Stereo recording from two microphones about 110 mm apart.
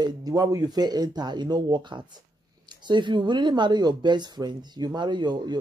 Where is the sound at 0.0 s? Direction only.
35° right (ahead or behind).